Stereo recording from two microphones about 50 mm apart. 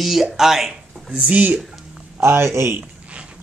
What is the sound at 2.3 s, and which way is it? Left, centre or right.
Speech, right.